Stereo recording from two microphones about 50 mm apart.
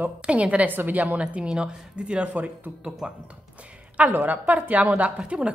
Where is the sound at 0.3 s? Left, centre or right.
Right.